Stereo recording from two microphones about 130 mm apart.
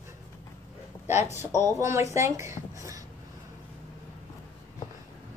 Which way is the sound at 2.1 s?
25° right (ahead or behind).